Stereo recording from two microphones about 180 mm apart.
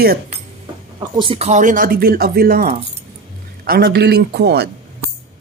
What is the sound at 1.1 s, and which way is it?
A man's voice, 30° right (ahead or behind).